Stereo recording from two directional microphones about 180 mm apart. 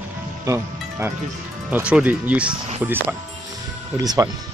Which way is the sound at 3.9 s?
20° right (ahead or behind).